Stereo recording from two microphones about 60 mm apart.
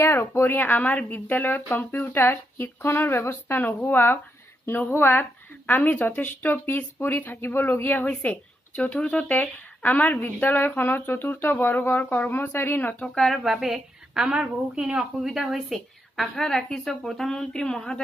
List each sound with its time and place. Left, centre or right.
0.0 s speech: left
0.4 s speech: left
13.0 s a woman's voice: centre
13.4 s a woman's voice: centre
14.3 s speech: centre
15.7 s a woman's voice: centre